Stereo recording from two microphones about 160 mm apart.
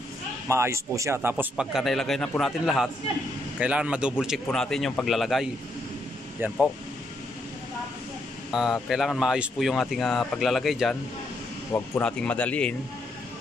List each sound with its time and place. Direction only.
0.5 s speech: 15° right (ahead or behind)
1.3 s speech: 5° right (ahead or behind)
8.5 s speech: centre (ahead or behind)
12.0 s speech: 5° left (ahead or behind)